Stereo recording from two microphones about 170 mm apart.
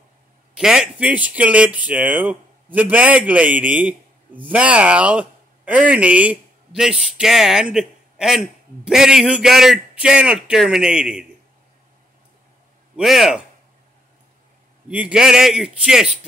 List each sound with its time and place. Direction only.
0.6 s a man's voice: 5° right (ahead or behind)
12.9 s a man's voice: centre (ahead or behind)
14.9 s a man's voice: 5° right (ahead or behind)